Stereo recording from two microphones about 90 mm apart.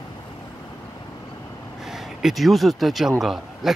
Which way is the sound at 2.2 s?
Centre (ahead or behind).